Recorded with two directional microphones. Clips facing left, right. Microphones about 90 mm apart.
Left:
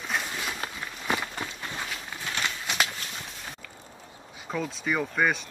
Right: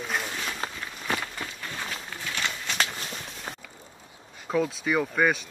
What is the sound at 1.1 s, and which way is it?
Run, 15° left (ahead or behind).